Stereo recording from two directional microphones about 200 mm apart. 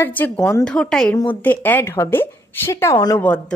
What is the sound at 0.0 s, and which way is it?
A woman's voice, 10° left (ahead or behind).